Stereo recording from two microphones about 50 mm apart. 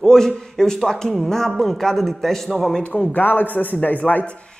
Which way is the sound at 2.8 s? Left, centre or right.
Left.